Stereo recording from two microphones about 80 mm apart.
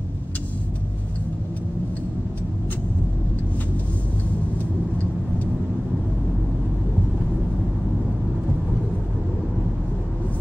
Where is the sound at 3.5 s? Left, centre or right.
Centre.